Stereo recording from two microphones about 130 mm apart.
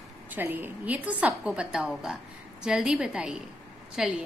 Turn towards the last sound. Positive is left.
turn(degrees=-5)  # may be behind; listen again after turning